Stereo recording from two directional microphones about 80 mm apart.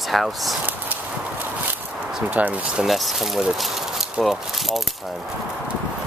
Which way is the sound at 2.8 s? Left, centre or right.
Centre.